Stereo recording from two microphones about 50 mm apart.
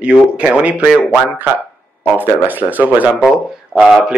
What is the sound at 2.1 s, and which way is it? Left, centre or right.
Speech, right.